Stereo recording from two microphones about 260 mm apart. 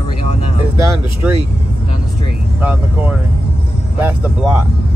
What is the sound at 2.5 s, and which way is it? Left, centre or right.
Speech, centre.